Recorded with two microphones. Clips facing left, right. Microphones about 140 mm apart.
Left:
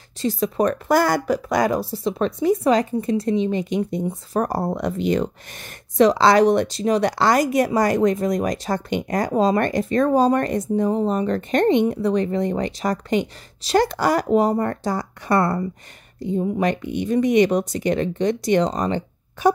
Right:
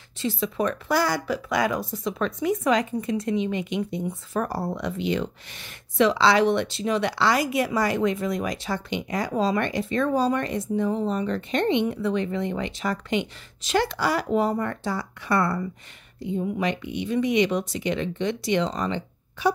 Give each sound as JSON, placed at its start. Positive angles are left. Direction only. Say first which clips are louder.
{"t": 0.2, "sound": "speech", "louder": "left 5 dB", "side_deg": 40}